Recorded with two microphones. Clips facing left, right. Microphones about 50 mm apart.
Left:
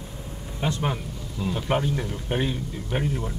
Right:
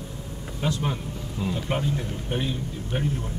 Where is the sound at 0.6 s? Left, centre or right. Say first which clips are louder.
Left 1 dB; left.